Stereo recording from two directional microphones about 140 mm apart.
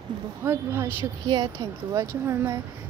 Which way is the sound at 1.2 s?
30° right (ahead or behind).